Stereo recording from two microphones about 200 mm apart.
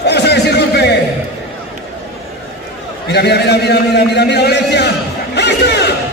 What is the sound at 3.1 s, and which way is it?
A man's voice, 55° left (ahead or behind).